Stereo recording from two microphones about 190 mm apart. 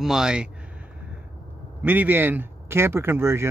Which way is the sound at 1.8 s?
10° right (ahead or behind).